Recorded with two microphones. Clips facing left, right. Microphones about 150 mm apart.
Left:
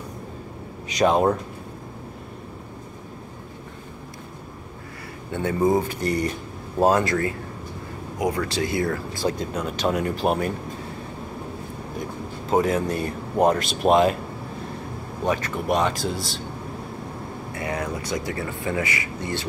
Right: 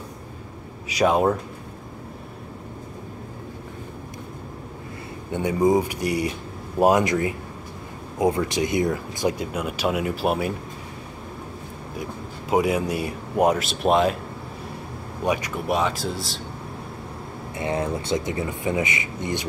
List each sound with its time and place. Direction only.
0.8 s speech: 5° right (ahead or behind)
5.3 s speech: 15° right (ahead or behind)
12.0 s speech: 10° right (ahead or behind)
15.2 s speech: 10° right (ahead or behind)
17.6 s speech: 25° right (ahead or behind)